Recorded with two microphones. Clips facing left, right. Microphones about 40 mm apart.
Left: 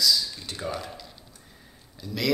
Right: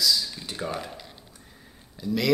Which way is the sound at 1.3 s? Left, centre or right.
Centre.